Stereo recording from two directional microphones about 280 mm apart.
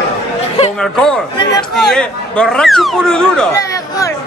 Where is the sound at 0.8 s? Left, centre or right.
Centre.